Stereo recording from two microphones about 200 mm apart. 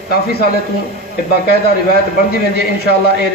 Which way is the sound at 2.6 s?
55° left (ahead or behind).